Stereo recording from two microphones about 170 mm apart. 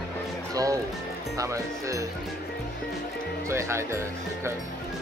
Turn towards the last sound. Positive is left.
turn(degrees=-15)  # may be behind; listen again after turning